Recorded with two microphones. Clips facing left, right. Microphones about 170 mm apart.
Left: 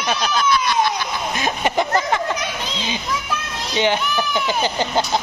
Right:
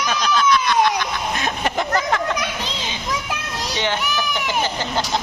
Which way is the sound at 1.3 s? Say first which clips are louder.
Left 4 dB; centre (ahead or behind).